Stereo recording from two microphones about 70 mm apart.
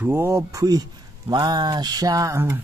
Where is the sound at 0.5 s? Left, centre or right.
Right.